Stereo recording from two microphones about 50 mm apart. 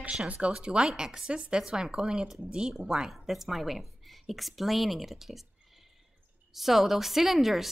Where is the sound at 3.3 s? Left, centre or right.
Centre.